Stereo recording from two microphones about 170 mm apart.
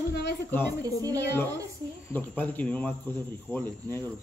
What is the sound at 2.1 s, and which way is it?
Speech, 10° left (ahead or behind).